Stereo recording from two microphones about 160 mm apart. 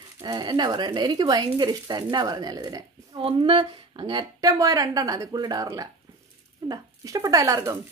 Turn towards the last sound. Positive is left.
turn(degrees=-20)  # may be behind; listen again after turning